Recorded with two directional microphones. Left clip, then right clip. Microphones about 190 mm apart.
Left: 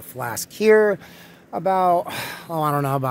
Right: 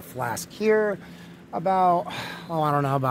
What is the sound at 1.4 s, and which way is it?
Speech, 55° left (ahead or behind).